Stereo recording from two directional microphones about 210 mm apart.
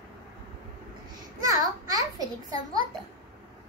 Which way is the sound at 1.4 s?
15° right (ahead or behind).